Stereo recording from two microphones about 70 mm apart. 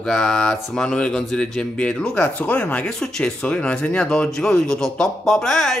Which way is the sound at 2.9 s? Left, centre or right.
Centre.